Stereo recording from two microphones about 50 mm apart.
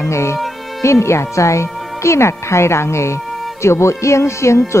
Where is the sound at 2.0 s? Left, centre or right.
Left.